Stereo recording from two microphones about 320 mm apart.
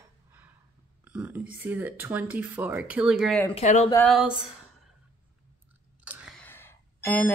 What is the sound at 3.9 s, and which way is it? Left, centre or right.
Speech, centre.